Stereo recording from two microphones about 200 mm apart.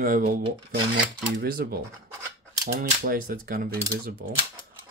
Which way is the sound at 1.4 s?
50° right (ahead or behind).